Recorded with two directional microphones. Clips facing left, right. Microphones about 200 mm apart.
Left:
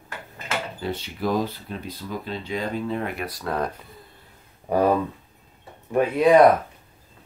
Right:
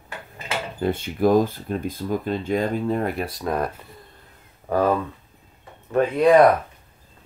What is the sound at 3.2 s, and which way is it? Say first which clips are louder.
Speech: right 2 dB; 25° right (ahead or behind).